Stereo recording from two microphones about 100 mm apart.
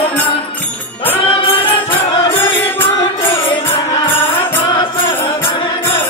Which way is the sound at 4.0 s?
60° left (ahead or behind).